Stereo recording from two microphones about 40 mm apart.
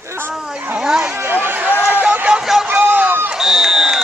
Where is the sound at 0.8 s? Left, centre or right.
Right.